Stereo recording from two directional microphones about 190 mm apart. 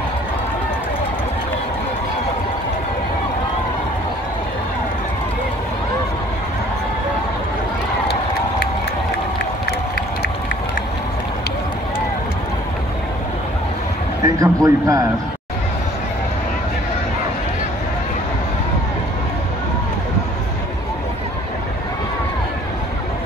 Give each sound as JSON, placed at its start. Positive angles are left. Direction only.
{"t": 14.2, "sound": "speech", "side_deg": -20}